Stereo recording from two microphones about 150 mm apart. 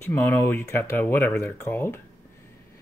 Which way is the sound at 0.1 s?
15° left (ahead or behind).